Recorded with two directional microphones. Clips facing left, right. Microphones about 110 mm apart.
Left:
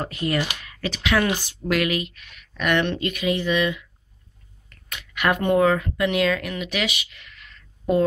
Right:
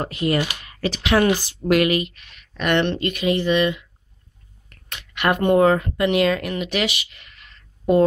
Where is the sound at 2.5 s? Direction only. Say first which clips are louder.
Right 2 dB; 30° right (ahead or behind).